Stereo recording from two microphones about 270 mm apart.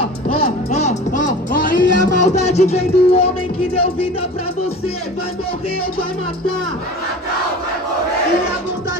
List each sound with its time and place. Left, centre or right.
0.4 s music: left